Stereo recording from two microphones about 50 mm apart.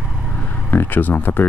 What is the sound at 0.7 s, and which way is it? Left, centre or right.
Speech, left.